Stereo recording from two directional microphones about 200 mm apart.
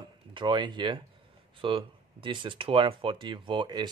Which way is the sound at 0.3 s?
25° right (ahead or behind).